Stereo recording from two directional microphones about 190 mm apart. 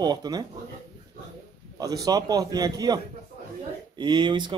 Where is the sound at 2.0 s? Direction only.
20° right (ahead or behind).